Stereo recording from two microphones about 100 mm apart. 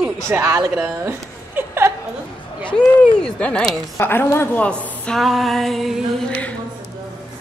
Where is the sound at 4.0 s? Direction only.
25° left (ahead or behind); by 6.0 s centre (ahead or behind).